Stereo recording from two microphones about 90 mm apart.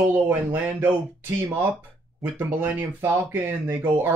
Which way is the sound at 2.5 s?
20° right (ahead or behind).